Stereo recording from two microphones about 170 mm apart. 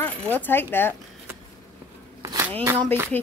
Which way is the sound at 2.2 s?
20° right (ahead or behind).